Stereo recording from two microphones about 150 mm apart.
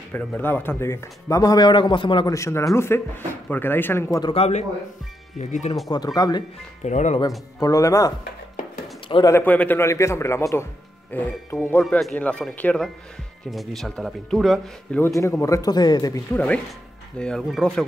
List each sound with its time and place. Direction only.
0.1 s speech: 10° left (ahead or behind); by 2.3 s 35° left (ahead or behind)
2.3 s speech: 20° left (ahead or behind)
4.2 s speech: 40° left (ahead or behind)
5.9 s speech: 25° left (ahead or behind)
6.8 s speech: 50° left (ahead or behind)
7.2 s speech: 25° left (ahead or behind)
9.3 s speech: 10° left (ahead or behind)
11.8 s speech: 5° left (ahead or behind)
15.4 s speech: 25° left (ahead or behind)
16.3 s speech: 10° left (ahead or behind)